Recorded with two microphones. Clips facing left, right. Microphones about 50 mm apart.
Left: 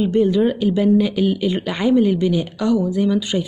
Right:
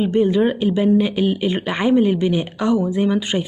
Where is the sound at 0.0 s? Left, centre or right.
Right.